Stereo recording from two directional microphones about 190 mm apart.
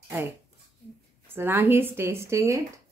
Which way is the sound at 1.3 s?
10° right (ahead or behind).